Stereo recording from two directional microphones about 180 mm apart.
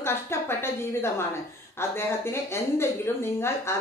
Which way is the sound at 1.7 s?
15° left (ahead or behind).